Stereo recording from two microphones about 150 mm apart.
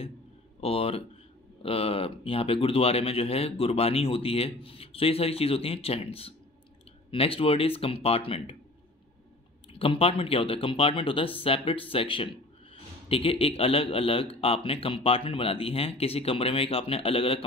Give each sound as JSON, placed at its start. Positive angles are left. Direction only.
{"t": 0.6, "sound": "speech", "side_deg": 40}
{"t": 9.7, "sound": "speech", "side_deg": 35}